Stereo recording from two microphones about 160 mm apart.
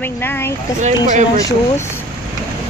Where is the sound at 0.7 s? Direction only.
50° right (ahead or behind).